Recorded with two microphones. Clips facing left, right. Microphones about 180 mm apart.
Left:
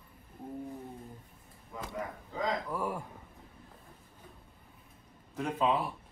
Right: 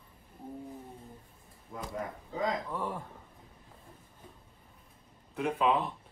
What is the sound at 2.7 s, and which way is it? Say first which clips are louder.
Speech: left 1 dB; 10° left (ahead or behind).